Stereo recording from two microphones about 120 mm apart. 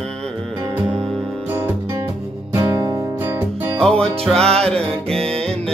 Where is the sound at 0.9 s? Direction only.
5° left (ahead or behind).